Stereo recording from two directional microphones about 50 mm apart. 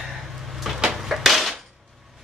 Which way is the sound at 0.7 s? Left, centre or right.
Centre.